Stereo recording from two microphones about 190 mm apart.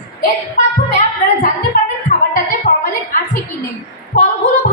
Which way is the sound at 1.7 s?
45° left (ahead or behind).